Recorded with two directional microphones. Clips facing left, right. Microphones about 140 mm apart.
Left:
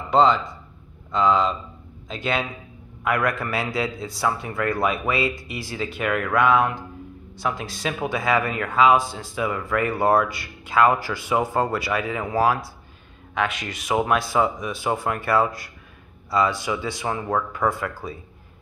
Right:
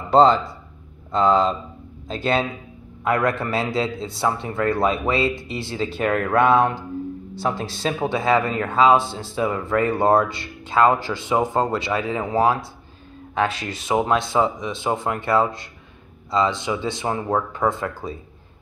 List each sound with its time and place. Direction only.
0.1 s speech: 35° right (ahead or behind)